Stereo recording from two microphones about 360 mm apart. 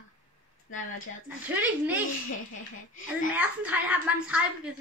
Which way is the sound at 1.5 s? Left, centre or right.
Centre.